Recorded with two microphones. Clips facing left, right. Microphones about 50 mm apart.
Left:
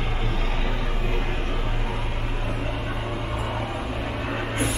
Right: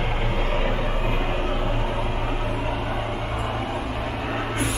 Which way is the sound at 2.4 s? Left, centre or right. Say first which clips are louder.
Right 3 dB; centre.